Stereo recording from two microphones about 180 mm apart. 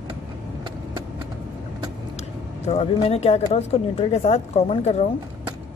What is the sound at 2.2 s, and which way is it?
Speech, 35° left (ahead or behind).